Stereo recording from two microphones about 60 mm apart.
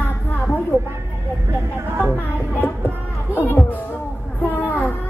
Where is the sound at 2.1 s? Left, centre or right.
Left.